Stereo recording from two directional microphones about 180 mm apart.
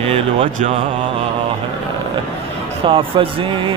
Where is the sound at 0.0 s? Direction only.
30° right (ahead or behind).